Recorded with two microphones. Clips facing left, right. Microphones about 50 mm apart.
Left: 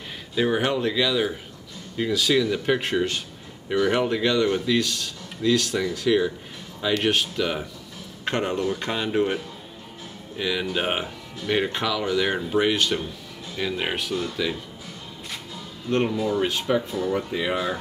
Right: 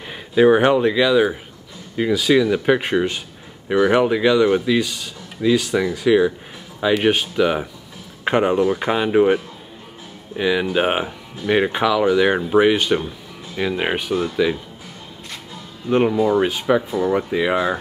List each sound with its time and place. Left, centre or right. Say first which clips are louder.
0.1 s speech: right 10 dB; centre
15.9 s speech: right 7 dB; centre